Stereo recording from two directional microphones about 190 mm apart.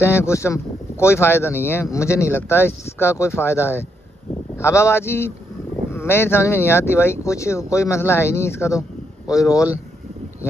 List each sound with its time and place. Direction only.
0.0 s speech: 15° left (ahead or behind)